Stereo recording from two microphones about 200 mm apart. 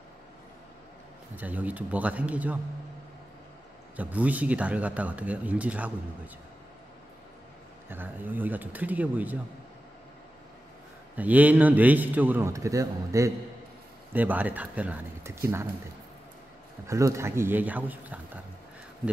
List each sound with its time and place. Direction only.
1.3 s a man's voice: 10° right (ahead or behind)
3.9 s a man's voice: 5° right (ahead or behind)
7.9 s a man's voice: 10° right (ahead or behind)
11.1 s a man's voice: 10° right (ahead or behind)
16.8 s a man's voice: 15° right (ahead or behind)